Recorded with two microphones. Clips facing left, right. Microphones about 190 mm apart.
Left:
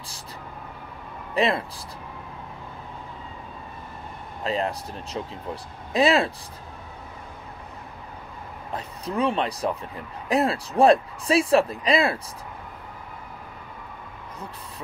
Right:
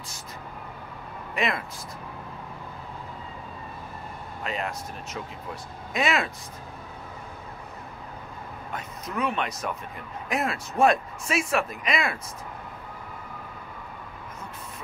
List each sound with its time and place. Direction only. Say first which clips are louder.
1.3 s speech: left 5 dB; 35° left (ahead or behind)
4.4 s speech: left 6 dB; 30° left (ahead or behind)
8.7 s speech: left 5 dB; 30° left (ahead or behind)